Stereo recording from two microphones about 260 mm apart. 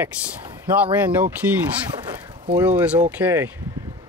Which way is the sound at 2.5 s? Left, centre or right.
Centre.